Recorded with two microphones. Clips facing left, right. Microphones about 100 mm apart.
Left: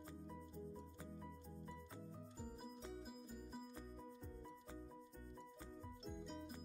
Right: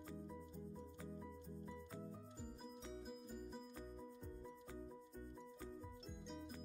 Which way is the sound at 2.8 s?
5° left (ahead or behind).